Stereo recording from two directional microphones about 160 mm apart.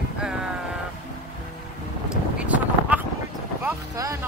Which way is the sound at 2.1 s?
10° right (ahead or behind).